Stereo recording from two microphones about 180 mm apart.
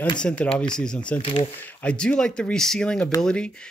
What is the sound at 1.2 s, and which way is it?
Speech, 35° left (ahead or behind).